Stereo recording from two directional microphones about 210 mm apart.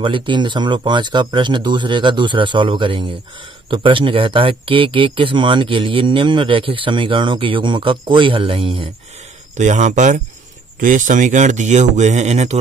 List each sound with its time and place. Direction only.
0.0 s speech: 25° right (ahead or behind)
9.6 s speech: 35° right (ahead or behind)